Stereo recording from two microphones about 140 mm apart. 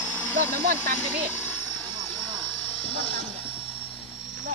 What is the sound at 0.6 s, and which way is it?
Speech, 90° right.